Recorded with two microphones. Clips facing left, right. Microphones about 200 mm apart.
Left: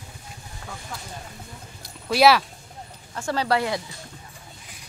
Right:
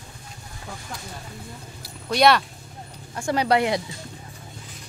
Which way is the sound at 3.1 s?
15° right (ahead or behind).